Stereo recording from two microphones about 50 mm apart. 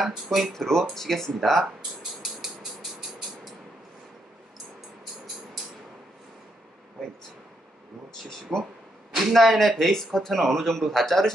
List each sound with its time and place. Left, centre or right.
0.0 s speech: centre
0.6 s speech: centre
7.0 s speech: centre
8.5 s speech: right
9.1 s speech: centre